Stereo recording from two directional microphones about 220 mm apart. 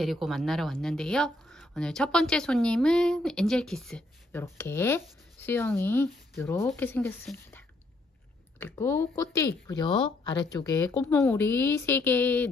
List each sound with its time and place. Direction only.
0.0 s a woman's voice: centre (ahead or behind)